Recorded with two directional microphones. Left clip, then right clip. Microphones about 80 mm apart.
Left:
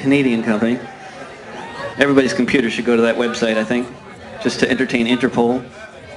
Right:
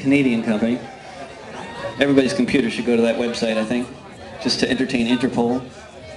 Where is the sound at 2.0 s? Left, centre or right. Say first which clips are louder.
Left 3 dB; left.